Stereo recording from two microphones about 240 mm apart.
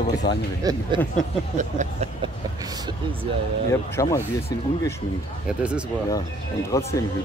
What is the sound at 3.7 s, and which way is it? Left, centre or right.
Speech, centre.